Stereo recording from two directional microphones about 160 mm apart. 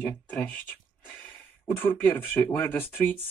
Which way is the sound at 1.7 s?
15° left (ahead or behind).